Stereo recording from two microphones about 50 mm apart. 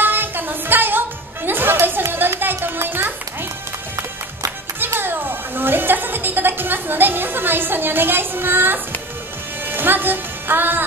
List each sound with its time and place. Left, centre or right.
0.0 s music: right
5.0 s music: right